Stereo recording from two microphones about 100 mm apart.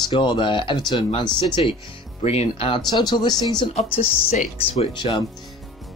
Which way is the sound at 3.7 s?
85° left.